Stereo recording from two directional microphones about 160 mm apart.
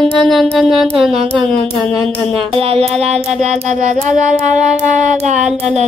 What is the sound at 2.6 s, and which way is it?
Music, 35° right (ahead or behind).